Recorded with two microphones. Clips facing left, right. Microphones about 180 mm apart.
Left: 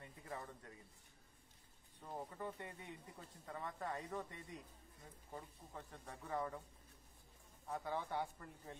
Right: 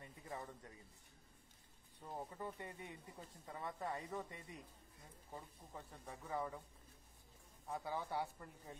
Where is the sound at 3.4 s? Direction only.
10° right (ahead or behind).